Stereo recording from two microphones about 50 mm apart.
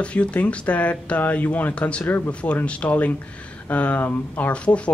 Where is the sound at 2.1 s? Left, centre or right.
Left.